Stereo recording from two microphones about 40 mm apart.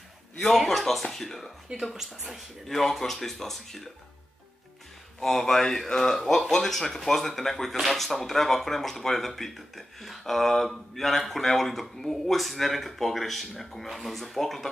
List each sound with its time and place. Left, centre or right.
0.4 s speech: centre
1.7 s speech: right
2.0 s speech: centre
5.2 s speech: centre